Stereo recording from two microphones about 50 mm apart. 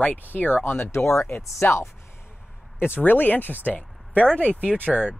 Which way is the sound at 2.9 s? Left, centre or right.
Left.